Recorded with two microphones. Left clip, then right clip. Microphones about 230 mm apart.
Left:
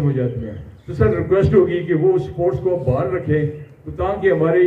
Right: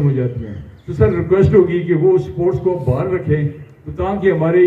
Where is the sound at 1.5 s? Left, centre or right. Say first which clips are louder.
Right 2 dB; left.